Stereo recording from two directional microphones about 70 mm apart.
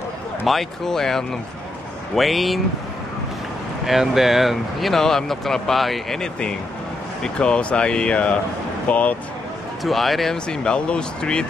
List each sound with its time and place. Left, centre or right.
0.5 s speech: centre
3.8 s speech: centre; by 9.1 s left
9.8 s speech: centre